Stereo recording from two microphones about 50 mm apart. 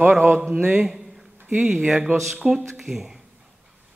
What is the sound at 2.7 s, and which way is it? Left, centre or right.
Speech, centre.